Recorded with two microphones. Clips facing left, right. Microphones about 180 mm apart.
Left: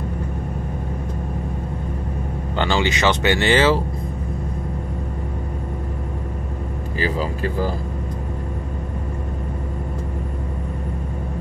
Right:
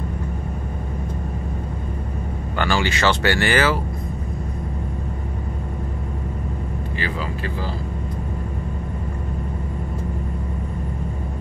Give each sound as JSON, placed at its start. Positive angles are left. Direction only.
{"t": 2.5, "sound": "speech", "side_deg": 20}
{"t": 7.0, "sound": "speech", "side_deg": 35}